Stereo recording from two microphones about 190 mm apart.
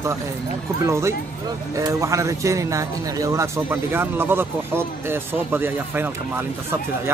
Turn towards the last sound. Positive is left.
turn(degrees=-10)  # may be behind; listen again after turning